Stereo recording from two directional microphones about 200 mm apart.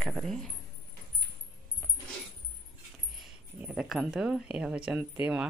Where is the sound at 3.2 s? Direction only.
5° right (ahead or behind).